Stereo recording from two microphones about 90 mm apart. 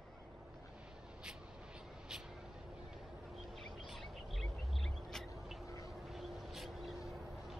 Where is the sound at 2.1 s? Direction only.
10° right (ahead or behind).